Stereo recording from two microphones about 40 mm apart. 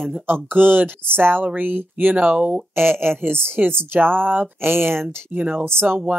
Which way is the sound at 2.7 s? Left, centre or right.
Right.